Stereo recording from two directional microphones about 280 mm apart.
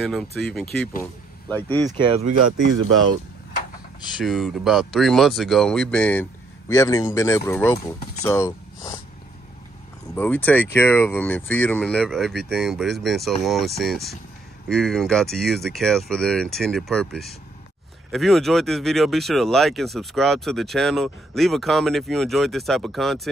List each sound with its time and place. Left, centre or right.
0.0 s speech: centre
1.9 s speech: right
2.4 s speech: right
4.1 s speech: centre
10.1 s speech: centre